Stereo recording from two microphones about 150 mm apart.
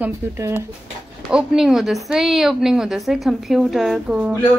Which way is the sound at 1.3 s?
5° right (ahead or behind).